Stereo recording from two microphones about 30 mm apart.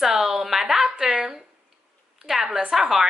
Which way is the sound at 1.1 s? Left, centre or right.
Right.